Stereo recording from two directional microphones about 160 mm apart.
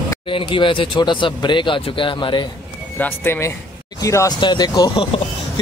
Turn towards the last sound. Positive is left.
turn(degrees=30)  # may be behind; listen again after turning